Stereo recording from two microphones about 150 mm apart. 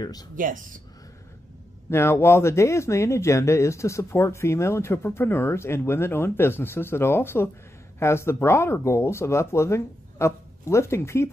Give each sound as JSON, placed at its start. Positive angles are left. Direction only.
{"t": 0.0, "sound": "speech", "side_deg": 25}
{"t": 1.9, "sound": "speech", "side_deg": 15}